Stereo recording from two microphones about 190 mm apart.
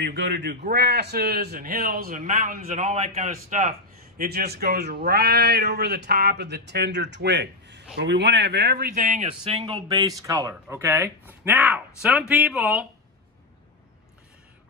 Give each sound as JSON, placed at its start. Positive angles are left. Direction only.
{"t": 0.0, "sound": "a man's voice", "side_deg": -65}
{"t": 4.2, "sound": "speech", "side_deg": -55}